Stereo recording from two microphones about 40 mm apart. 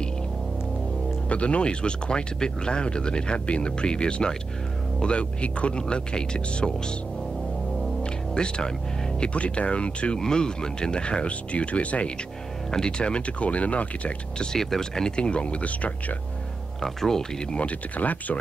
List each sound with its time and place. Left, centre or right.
1.3 s speech: left
8.0 s music: left
9.2 s speech: left
10.1 s speech: centre; by 12.1 s left
12.7 s speech: left
14.4 s speech: centre; by 16.2 s left
16.8 s speech: centre
17.5 s speech: left